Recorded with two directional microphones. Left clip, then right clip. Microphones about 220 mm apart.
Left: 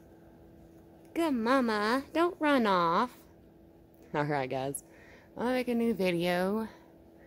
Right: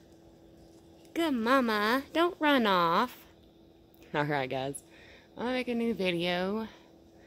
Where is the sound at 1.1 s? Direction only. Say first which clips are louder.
Right 1 dB; centre (ahead or behind).